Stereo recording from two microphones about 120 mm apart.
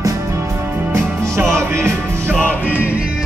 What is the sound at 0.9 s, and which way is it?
Music, 25° right (ahead or behind).